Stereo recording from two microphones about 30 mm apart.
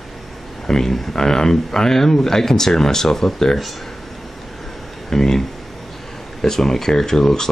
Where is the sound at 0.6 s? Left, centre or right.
Centre.